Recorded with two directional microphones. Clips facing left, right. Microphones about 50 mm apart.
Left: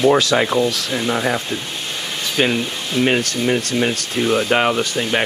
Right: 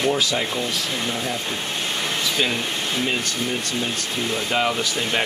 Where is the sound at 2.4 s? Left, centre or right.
Left.